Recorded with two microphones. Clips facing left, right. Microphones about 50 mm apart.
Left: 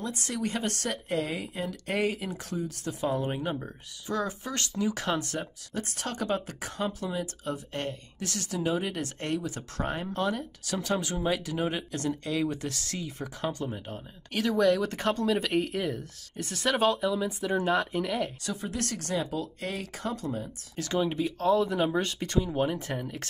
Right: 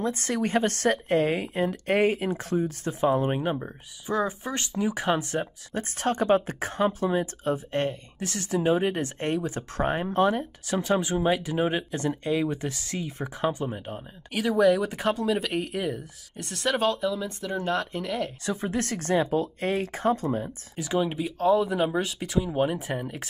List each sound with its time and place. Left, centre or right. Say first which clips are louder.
0.0 s speech: right 5 dB; right
5.8 s speech: right 7 dB; right; by 18.3 s centre
18.4 s speech: right 5 dB; right
20.7 s speech: right 2 dB; centre